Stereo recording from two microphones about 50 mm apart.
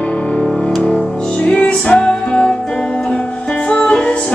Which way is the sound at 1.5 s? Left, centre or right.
Centre.